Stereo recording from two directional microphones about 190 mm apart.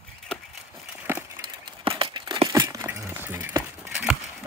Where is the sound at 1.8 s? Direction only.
25° right (ahead or behind).